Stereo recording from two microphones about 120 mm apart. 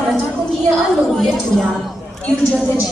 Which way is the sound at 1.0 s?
Centre (ahead or behind).